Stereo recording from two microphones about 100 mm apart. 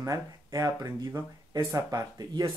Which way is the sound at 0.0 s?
35° right (ahead or behind).